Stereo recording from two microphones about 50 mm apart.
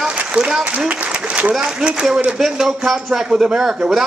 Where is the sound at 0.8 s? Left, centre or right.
Right.